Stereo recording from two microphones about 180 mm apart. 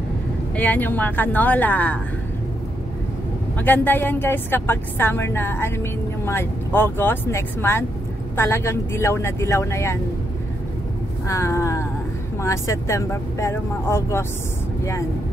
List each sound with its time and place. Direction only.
0.6 s a woman's voice: 10° left (ahead or behind)
3.5 s a woman's voice: 10° left (ahead or behind)
11.2 s a woman's voice: 15° left (ahead or behind)